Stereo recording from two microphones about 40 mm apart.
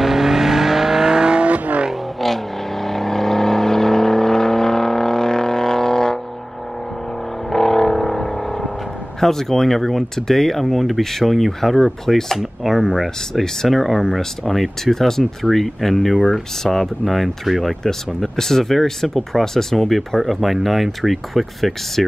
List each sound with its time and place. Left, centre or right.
0.0 s vehicle: centre
1.5 s vehicle: right
2.1 s vehicle: centre
7.4 s vehicle: centre
9.2 s speech: centre